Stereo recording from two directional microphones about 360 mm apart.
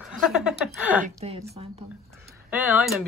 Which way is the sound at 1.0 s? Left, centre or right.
Centre.